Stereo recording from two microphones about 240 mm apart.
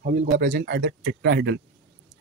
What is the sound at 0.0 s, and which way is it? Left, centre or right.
Speech, right.